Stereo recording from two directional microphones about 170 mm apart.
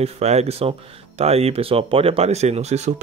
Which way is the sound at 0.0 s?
40° right (ahead or behind).